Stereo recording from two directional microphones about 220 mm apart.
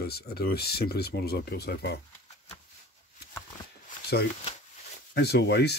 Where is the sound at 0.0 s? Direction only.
45° left (ahead or behind).